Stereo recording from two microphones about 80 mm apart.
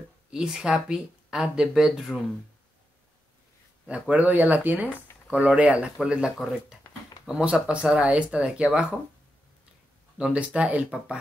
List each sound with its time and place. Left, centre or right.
0.3 s speech: centre
4.1 s speech: centre
10.1 s speech: centre